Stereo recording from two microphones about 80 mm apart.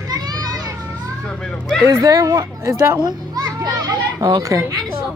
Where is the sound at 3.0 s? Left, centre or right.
Right.